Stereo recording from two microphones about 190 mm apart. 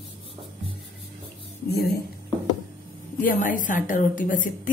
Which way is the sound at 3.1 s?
45° left (ahead or behind).